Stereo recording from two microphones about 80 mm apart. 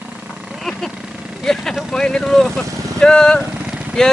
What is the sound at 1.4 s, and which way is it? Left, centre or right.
Speech, centre.